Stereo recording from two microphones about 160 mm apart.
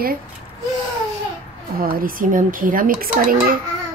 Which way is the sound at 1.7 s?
65° right (ahead or behind).